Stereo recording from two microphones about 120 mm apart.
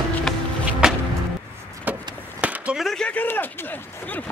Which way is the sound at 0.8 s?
5° right (ahead or behind).